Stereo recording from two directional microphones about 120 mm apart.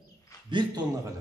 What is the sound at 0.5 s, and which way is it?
Speech, 40° right (ahead or behind).